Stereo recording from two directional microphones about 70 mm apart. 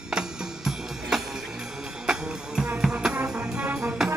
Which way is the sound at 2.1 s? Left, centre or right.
Centre.